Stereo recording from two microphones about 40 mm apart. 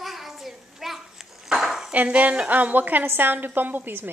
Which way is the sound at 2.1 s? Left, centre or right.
Right.